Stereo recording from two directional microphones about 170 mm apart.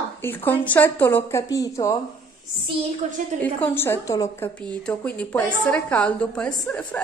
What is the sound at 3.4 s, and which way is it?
A woman's voice, 10° left (ahead or behind).